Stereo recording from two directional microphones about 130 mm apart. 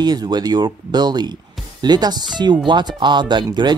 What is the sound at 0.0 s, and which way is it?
Speech, 30° right (ahead or behind).